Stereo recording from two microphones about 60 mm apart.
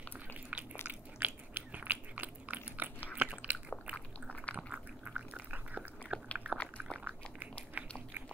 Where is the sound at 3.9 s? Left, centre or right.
Left.